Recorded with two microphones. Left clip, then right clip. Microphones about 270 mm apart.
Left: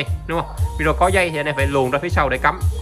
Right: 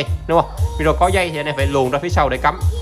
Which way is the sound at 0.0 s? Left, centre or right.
Centre.